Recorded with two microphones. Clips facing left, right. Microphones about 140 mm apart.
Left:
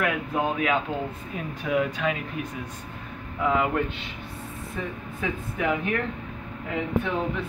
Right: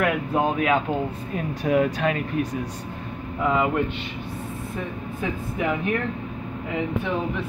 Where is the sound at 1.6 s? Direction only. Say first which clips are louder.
Right 4 dB; 45° right (ahead or behind).